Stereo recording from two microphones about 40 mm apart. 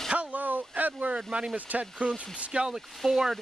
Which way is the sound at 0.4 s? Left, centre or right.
Right.